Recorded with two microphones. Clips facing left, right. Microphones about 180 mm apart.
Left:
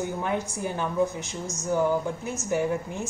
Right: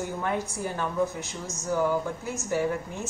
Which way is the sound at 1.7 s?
20° left (ahead or behind).